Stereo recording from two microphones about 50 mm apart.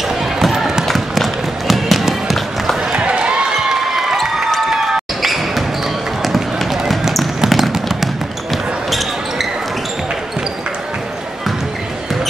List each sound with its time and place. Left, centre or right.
0.4 s music: centre
2.9 s basketball bounce: centre
3.6 s basketball bounce: centre
6.2 s run: centre
6.9 s a sound: centre